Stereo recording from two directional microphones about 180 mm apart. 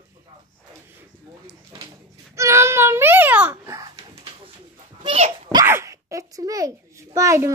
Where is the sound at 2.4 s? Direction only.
15° right (ahead or behind).